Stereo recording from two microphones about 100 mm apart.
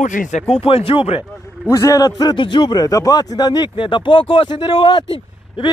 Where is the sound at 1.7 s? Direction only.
35° left (ahead or behind).